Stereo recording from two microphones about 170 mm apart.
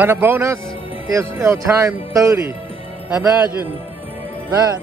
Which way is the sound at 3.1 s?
5° right (ahead or behind).